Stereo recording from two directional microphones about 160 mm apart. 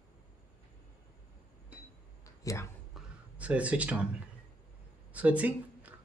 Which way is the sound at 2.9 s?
10° right (ahead or behind).